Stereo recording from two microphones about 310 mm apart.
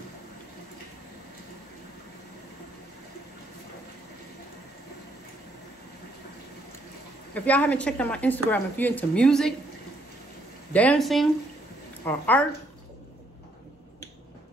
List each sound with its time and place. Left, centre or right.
7.3 s a woman's voice: centre
10.7 s a woman's voice: centre